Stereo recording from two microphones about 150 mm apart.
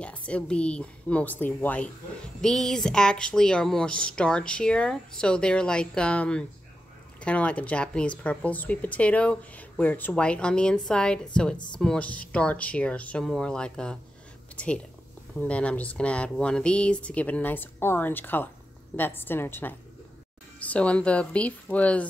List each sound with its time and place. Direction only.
0.0 s a woman's voice: 10° left (ahead or behind)
11.5 s speech: 30° left (ahead or behind)
11.8 s speech: 5° left (ahead or behind)
15.3 s speech: 10° left (ahead or behind)